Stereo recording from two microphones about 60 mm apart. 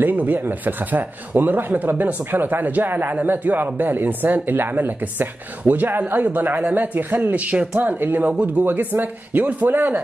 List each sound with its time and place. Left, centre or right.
0.0 s speech: right